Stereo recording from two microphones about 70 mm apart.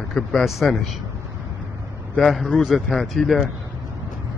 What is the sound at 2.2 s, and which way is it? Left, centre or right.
A man's voice, centre.